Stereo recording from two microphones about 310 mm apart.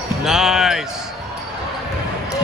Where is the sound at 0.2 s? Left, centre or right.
Centre.